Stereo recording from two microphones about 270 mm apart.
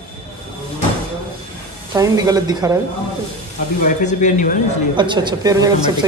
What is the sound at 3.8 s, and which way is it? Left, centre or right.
Speech, left.